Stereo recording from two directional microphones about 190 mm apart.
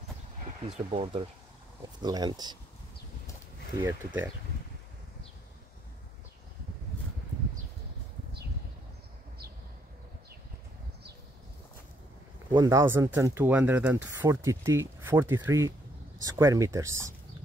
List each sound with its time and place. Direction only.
0.8 s speech: 30° right (ahead or behind)
3.8 s speech: 10° right (ahead or behind)
12.4 s speech: 20° right (ahead or behind)